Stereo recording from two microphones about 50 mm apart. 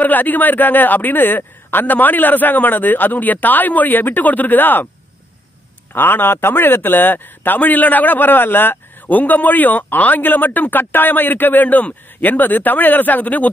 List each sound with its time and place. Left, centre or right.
0.0 s a man's voice: left
5.9 s a man's voice: left